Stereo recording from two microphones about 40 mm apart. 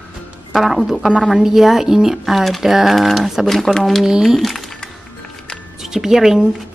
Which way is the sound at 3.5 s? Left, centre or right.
Centre.